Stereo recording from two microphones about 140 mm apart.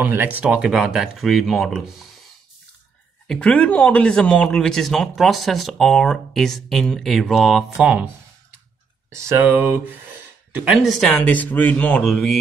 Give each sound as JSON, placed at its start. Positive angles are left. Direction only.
{"t": 0.0, "sound": "speech", "side_deg": -15}
{"t": 3.3, "sound": "speech", "side_deg": 10}
{"t": 9.1, "sound": "speech", "side_deg": -20}